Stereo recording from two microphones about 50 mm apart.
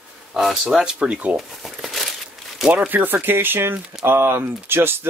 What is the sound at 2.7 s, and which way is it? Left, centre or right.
Speech, right.